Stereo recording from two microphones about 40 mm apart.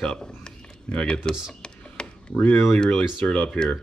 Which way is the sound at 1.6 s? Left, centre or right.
Left.